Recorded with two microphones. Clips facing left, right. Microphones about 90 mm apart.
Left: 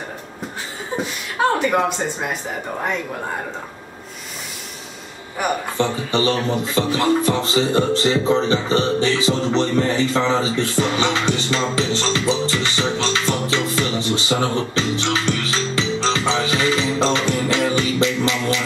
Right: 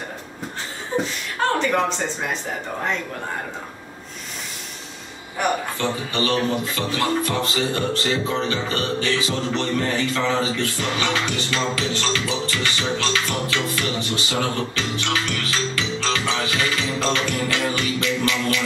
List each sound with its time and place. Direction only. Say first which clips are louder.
1.4 s a sound: left 3 dB; 10° left (ahead or behind)
5.8 s speech: left 4 dB; 25° left (ahead or behind)
14.3 s music: left 4 dB; 25° left (ahead or behind)